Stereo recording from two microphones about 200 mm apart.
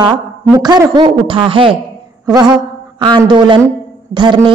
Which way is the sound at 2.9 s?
20° right (ahead or behind).